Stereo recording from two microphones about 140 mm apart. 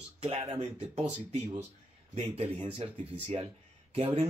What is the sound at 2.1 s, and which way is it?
Speech, 45° right (ahead or behind).